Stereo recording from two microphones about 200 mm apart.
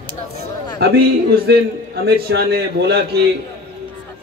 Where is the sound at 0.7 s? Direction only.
55° right (ahead or behind).